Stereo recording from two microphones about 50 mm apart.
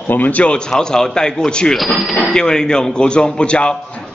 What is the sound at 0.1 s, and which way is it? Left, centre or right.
Speech, left.